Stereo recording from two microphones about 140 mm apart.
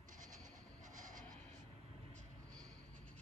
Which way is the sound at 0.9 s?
70° right (ahead or behind).